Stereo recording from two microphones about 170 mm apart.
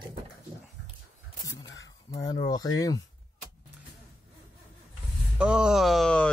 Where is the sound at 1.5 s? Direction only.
90° left.